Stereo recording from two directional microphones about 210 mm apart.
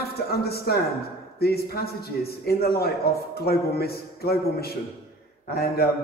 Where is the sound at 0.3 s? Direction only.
50° left (ahead or behind).